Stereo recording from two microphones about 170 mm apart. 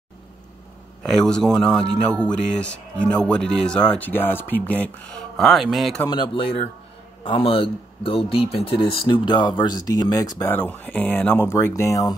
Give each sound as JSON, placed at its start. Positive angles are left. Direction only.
{"t": 1.0, "sound": "speech", "side_deg": 5}
{"t": 5.4, "sound": "speech", "side_deg": 0}
{"t": 6.0, "sound": "speech", "side_deg": 25}
{"t": 10.4, "sound": "speech", "side_deg": 10}